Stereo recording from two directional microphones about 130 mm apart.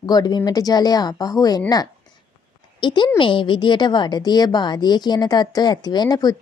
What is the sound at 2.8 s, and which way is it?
A woman's voice, 35° left (ahead or behind).